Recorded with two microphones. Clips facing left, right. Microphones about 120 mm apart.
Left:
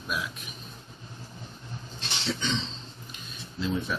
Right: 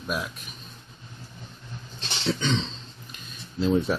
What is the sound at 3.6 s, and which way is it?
Speech, 40° right (ahead or behind).